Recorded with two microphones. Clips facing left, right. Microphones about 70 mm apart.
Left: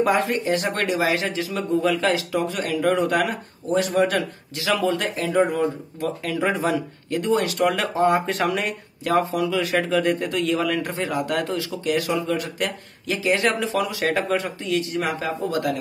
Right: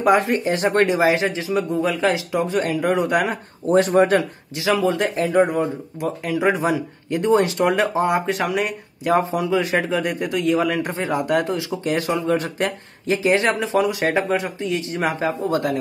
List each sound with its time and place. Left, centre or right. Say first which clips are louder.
0.0 s speech: right 3 dB; right
2.9 s speech: even; centre
3.3 s speech: right 4 dB; right
8.0 s speech: even; centre
8.6 s speech: right 3 dB; right